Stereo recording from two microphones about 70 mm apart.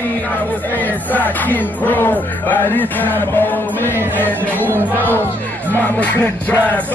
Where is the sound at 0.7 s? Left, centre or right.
Left.